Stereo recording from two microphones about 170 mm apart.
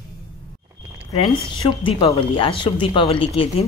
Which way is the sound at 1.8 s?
30° left (ahead or behind).